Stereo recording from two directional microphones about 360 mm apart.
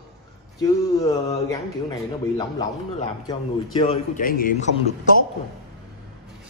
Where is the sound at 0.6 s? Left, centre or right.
Centre.